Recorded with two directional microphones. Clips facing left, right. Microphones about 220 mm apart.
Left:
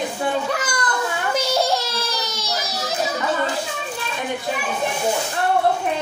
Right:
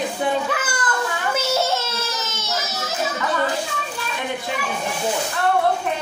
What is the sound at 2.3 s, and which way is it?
Baby cry, 35° left (ahead or behind).